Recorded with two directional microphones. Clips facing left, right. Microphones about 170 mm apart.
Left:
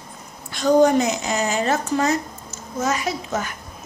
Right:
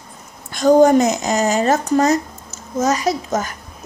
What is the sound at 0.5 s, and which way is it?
A woman's voice, 45° right (ahead or behind).